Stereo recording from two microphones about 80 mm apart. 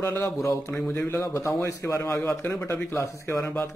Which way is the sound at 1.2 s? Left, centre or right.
Left.